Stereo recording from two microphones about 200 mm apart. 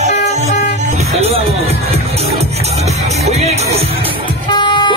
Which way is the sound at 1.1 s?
30° right (ahead or behind).